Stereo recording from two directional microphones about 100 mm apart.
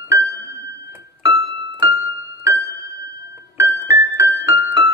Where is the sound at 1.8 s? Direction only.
30° right (ahead or behind).